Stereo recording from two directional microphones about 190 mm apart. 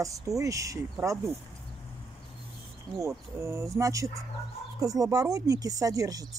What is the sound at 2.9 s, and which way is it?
Speech, 15° right (ahead or behind).